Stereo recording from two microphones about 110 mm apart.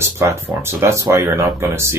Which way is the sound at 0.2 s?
25° right (ahead or behind).